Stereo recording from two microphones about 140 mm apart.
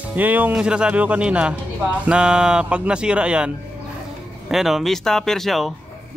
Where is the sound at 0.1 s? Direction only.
10° right (ahead or behind).